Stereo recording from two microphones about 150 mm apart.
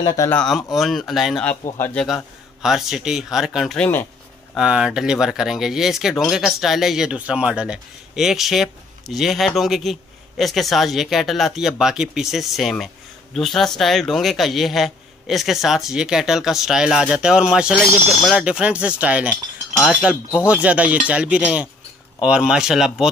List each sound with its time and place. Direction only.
0.0 s speech: 25° left (ahead or behind)
0.3 s speech: 5° left (ahead or behind)
4.6 s speech: 5° right (ahead or behind)